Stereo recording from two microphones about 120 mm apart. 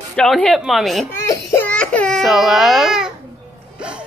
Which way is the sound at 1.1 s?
20° left (ahead or behind).